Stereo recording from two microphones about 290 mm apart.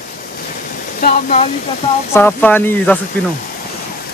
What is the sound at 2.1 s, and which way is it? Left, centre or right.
Speech, centre.